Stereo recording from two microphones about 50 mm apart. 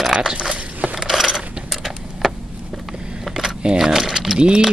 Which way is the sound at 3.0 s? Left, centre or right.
Centre.